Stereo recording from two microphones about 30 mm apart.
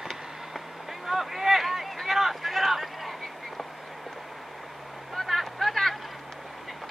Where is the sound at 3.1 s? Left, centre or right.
Centre.